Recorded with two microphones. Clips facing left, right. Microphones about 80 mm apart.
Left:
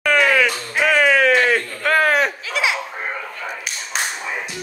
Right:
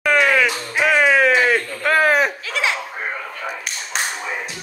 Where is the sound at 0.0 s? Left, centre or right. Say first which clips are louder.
Even; centre.